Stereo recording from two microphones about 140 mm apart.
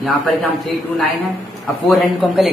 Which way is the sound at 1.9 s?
Centre (ahead or behind).